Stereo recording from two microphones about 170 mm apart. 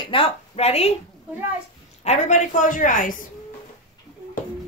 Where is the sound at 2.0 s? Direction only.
45° left (ahead or behind).